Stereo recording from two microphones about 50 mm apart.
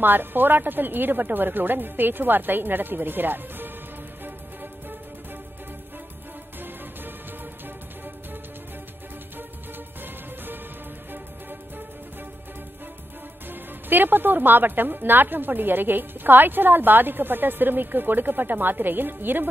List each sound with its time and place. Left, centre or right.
0.0 s a woman's voice: right
13.5 s a woman's voice: right